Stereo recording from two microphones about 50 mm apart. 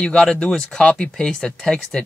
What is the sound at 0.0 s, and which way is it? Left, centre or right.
Speech, centre.